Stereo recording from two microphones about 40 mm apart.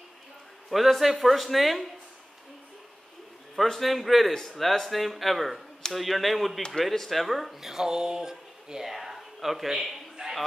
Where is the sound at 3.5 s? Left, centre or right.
Centre.